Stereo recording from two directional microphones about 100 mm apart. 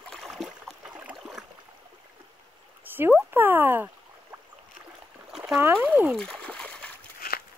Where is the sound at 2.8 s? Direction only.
20° right (ahead or behind).